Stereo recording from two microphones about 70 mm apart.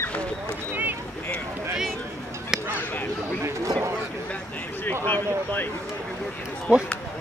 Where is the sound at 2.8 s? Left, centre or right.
Left.